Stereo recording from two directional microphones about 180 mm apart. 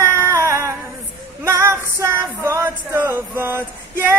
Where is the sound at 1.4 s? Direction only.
15° right (ahead or behind).